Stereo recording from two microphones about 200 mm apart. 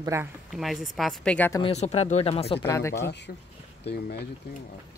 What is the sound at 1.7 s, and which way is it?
Speech, 30° left (ahead or behind).